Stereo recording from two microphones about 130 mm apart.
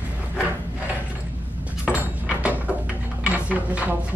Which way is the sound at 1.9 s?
10° right (ahead or behind).